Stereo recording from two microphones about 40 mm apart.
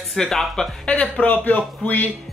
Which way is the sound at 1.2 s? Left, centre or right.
Left.